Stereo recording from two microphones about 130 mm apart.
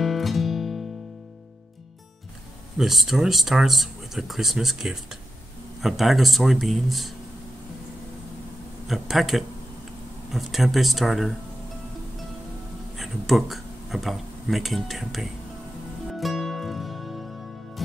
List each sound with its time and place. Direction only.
0.0 s music: centre (ahead or behind)
2.8 s speech: centre (ahead or behind)
8.8 s speech: centre (ahead or behind)
12.9 s speech: centre (ahead or behind)
16.1 s music: centre (ahead or behind)